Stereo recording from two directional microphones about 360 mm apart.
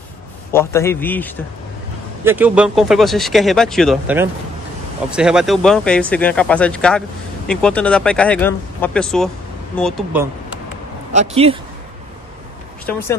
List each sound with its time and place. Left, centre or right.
0.5 s speech: centre
11.1 s speech: centre
12.8 s speech: centre